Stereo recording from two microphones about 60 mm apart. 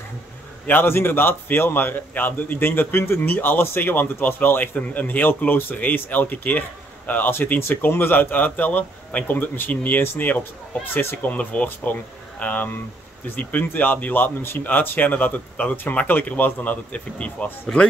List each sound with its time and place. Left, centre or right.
0.7 s a man's voice: left
15.7 s a man's voice: left